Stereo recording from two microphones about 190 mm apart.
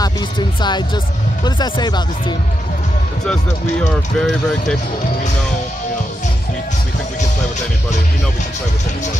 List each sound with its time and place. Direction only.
0.0 s speech: 25° left (ahead or behind)
4.2 s speech: 5° left (ahead or behind)